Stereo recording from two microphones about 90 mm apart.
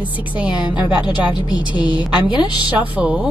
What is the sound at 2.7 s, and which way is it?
Speech, 15° right (ahead or behind).